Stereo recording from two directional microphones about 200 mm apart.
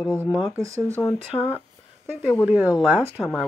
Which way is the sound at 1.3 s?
25° left (ahead or behind).